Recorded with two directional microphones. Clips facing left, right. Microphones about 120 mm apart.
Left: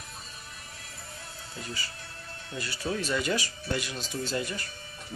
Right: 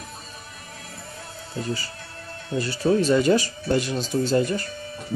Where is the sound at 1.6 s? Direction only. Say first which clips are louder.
Right 10 dB; 35° right (ahead or behind).